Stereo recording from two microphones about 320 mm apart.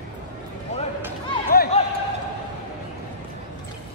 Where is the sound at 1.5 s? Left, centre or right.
Left.